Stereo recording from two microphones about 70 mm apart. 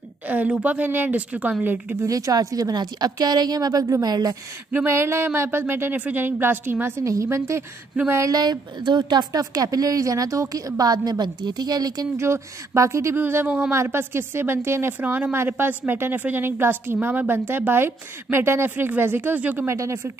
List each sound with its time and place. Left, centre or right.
0.3 s a woman's voice: centre
2.0 s a woman's voice: right
4.8 s a woman's voice: right
7.0 s speech: right
8.3 s a woman's voice: right
9.4 s a woman's voice: right
12.2 s speech: right
13.1 s a woman's voice: right
19.7 s speech: right